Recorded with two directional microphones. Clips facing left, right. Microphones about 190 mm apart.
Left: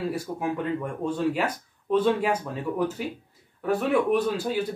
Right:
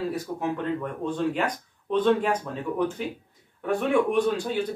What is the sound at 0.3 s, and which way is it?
Speech, 10° left (ahead or behind).